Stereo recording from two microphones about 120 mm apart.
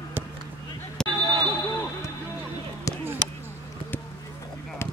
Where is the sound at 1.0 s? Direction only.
5° left (ahead or behind).